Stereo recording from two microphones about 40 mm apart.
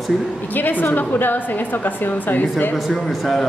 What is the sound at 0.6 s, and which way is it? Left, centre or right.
A woman's voice, left.